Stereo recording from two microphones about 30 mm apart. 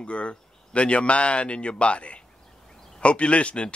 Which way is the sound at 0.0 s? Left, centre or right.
Left.